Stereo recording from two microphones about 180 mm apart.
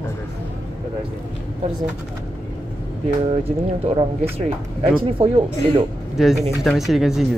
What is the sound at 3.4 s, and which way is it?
Speech, 35° right (ahead or behind).